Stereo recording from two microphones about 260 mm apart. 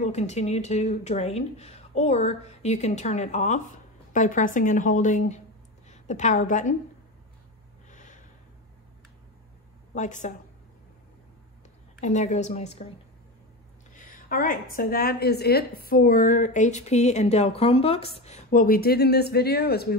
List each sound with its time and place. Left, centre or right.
0.0 s a woman's voice: left
7.9 s snort: left
9.9 s speech: left
12.0 s speech: left
13.9 s a woman's voice: left